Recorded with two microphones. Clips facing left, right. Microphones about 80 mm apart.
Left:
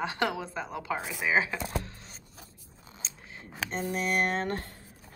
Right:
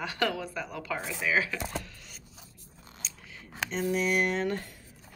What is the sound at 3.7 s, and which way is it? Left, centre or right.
Speech, left.